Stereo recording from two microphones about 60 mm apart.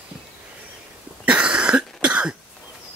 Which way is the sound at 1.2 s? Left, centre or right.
Centre.